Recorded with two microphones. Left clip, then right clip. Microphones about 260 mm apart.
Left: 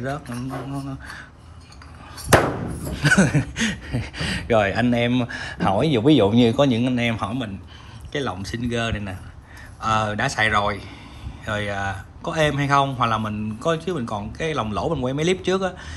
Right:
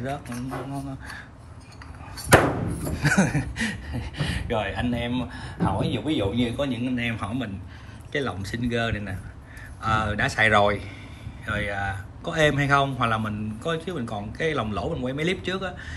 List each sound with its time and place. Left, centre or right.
0.0 s a man's voice: centre
3.0 s a man's voice: centre
5.7 s speech: left
6.0 s a man's voice: left; by 10.9 s centre
11.4 s a man's voice: centre